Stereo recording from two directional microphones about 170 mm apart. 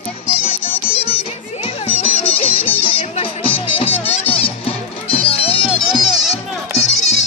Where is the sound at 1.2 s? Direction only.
35° left (ahead or behind).